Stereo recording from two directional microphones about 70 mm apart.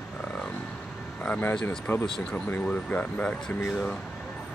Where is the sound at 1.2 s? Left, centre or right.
Centre.